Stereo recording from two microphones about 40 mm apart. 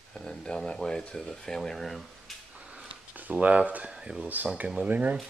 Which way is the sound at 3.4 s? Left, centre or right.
Right.